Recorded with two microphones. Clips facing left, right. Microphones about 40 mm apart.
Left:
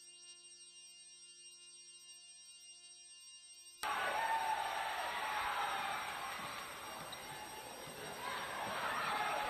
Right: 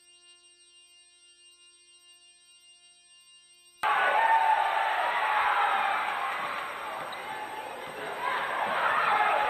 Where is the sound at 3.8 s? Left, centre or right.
Right.